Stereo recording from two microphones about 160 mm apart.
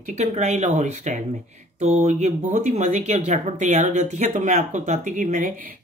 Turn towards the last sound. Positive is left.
turn(degrees=-60)  # may be behind; listen again after turning